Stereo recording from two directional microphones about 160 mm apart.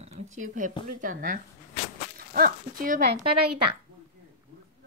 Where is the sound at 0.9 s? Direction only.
60° right (ahead or behind).